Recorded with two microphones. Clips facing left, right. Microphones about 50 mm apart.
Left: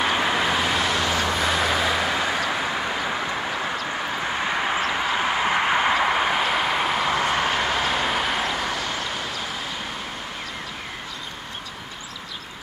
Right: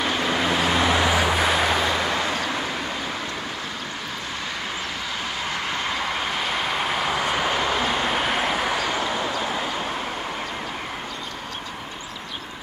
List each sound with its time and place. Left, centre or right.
0.0 s vehicle: centre
0.7 s vehicle: centre
4.4 s a sound: left; by 7.8 s centre
7.8 s vehicle: centre